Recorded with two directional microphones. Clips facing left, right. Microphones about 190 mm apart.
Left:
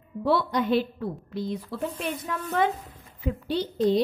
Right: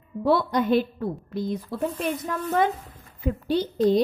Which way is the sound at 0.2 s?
45° right (ahead or behind).